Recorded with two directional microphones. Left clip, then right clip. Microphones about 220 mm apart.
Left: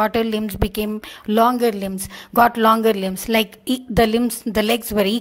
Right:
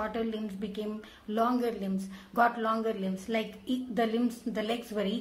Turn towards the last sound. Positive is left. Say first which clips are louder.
# left 14 dB
turn(degrees=45)  # may be behind; listen again after turning